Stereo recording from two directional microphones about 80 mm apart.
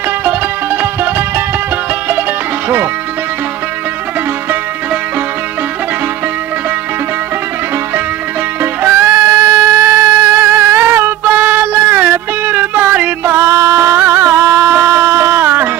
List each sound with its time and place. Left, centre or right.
0.2 s music: right
8.8 s a sound: right
13.3 s music: right